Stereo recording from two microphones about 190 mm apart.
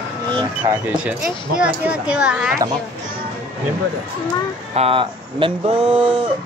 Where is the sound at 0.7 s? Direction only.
5° right (ahead or behind).